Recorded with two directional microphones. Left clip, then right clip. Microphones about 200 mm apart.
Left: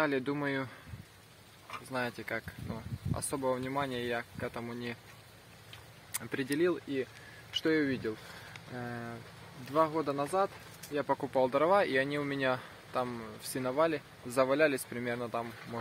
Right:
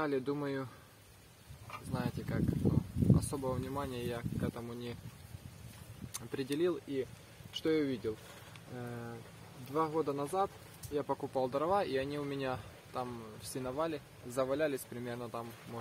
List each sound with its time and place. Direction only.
0.0 s speech: 20° left (ahead or behind)
1.9 s speech: 25° left (ahead or behind)
6.1 s speech: 20° left (ahead or behind)